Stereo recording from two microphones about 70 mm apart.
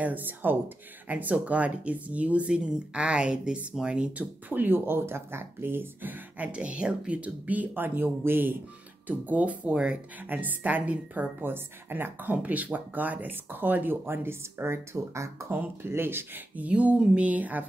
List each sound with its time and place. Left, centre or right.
0.0 s speech: right
4.5 s speech: right
10.2 s speech: right
15.5 s speech: right